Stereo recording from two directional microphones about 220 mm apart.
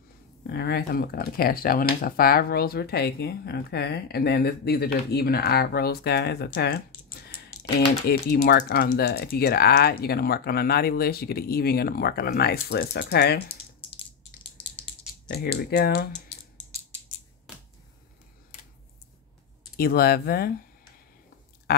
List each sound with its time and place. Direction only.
0.4 s speech: 45° left (ahead or behind)
15.2 s speech: 45° left (ahead or behind)
17.5 s finger snapping: 5° right (ahead or behind)
19.8 s speech: 45° left (ahead or behind)